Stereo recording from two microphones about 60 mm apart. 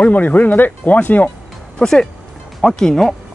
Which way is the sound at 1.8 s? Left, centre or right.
Centre.